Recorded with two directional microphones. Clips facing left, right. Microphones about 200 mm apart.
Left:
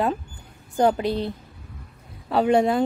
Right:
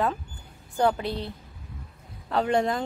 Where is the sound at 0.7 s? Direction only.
20° left (ahead or behind).